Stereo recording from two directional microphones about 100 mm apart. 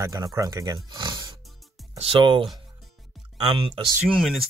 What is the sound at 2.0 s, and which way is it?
Speech, 55° right (ahead or behind).